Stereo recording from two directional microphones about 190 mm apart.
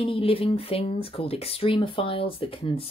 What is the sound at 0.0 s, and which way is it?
Speech, 30° left (ahead or behind).